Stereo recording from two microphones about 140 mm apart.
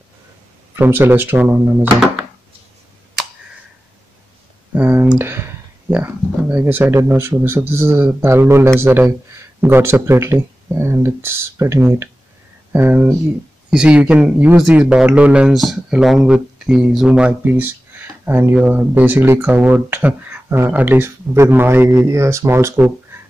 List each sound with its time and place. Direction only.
0.7 s speech: 15° right (ahead or behind)
4.7 s a sound: 10° right (ahead or behind)
6.5 s speech: 15° right (ahead or behind)